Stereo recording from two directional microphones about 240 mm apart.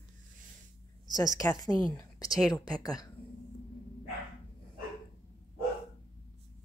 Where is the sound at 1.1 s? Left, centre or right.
Centre.